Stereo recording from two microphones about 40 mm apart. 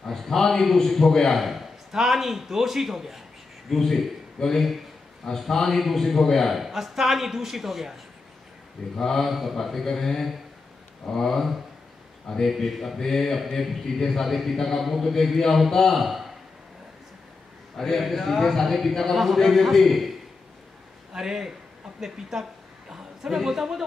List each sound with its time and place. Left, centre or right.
0.0 s speech: centre
3.6 s speech: centre
6.5 s speech: centre
8.9 s speech: centre
16.0 s a sound: centre
17.7 s speech: centre
21.1 s a man's voice: centre